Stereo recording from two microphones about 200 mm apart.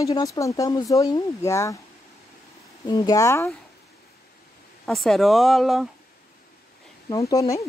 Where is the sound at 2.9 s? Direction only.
20° left (ahead or behind).